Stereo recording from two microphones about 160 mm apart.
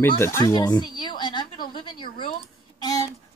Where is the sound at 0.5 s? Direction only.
25° left (ahead or behind).